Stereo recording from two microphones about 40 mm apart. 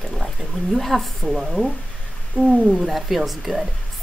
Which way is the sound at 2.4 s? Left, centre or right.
Left.